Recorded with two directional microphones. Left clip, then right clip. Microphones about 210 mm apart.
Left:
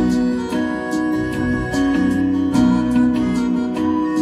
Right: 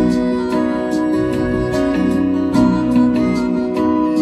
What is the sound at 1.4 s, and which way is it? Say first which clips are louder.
Music: right 3 dB; 45° left (ahead or behind).